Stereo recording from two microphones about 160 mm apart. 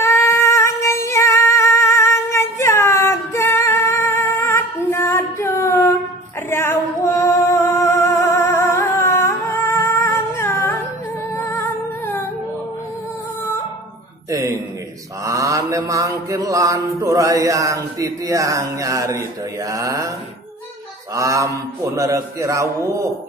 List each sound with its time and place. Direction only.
0.0 s female singing: 15° left (ahead or behind)
6.5 s music: 15° left (ahead or behind)
15.2 s mantra: 20° right (ahead or behind)
21.1 s a man's voice: 20° right (ahead or behind)